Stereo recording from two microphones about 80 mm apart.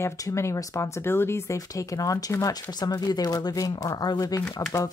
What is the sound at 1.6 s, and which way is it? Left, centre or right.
Speech, left.